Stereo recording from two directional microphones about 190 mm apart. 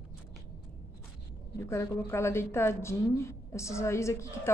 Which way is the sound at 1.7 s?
15° left (ahead or behind).